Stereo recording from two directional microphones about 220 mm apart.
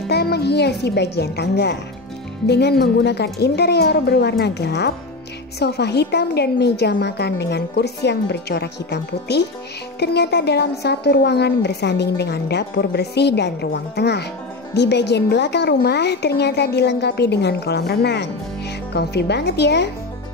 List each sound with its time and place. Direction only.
0.1 s a woman's voice: 50° left (ahead or behind)